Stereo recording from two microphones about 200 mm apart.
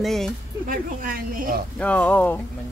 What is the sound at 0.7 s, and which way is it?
Speech, 45° right (ahead or behind).